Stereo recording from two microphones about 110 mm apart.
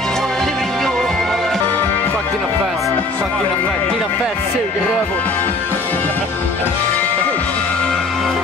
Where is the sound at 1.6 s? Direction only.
15° left (ahead or behind).